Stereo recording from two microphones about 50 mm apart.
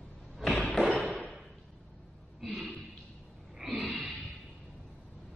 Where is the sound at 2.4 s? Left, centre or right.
Centre.